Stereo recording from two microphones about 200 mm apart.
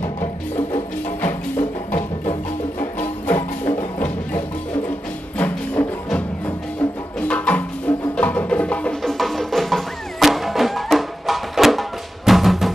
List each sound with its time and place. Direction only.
0.0 s music: 10° left (ahead or behind)
3.7 s music: 10° left (ahead or behind)
5.4 s music: 5° left (ahead or behind)